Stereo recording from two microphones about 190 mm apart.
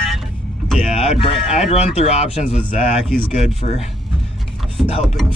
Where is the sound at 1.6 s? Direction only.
35° left (ahead or behind).